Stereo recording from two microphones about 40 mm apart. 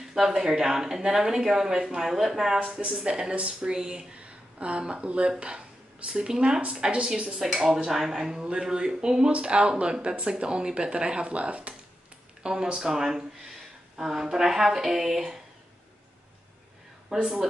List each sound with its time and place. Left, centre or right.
0.0 s speech: centre
2.6 s speech: right
7.5 s speech: centre; by 11.7 s right
12.7 s speech: centre
17.1 s speech: centre